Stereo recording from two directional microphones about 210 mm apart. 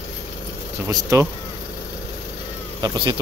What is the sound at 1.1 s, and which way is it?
Speech, 15° right (ahead or behind).